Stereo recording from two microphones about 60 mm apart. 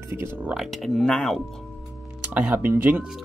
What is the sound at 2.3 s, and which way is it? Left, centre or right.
Speech, right.